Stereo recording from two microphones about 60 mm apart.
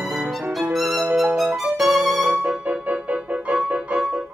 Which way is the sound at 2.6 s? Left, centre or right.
Right.